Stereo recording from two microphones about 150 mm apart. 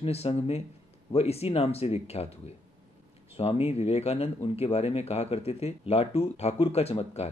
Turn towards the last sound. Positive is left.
turn(degrees=45)  # may be behind; listen again after turning